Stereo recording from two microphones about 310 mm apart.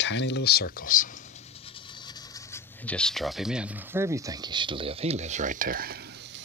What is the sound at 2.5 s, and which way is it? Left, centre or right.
Speech, centre.